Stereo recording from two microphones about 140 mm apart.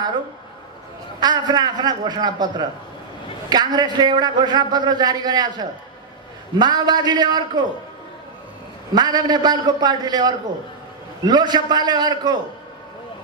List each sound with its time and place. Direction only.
1.2 s a man's voice: 30° right (ahead or behind)
8.9 s a man's voice: 30° right (ahead or behind)